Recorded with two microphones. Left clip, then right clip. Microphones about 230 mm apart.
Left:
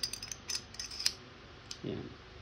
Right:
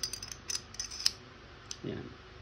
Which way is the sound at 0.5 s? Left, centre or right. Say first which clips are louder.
Right 2 dB; right.